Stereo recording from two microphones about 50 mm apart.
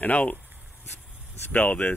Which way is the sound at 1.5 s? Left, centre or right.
Left.